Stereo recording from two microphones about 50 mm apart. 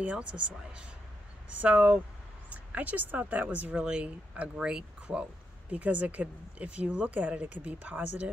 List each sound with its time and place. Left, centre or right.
0.0 s speech: right
1.5 s speech: right
3.7 s speech: right